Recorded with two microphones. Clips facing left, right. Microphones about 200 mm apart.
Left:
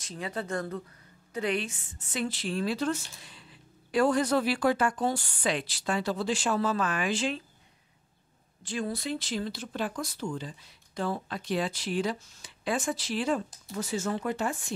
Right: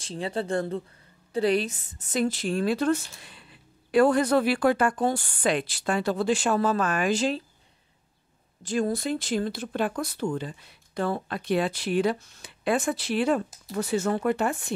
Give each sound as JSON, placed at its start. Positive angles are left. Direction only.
{"t": 0.0, "sound": "a woman's voice", "side_deg": -30}
{"t": 8.6, "sound": "speech", "side_deg": -45}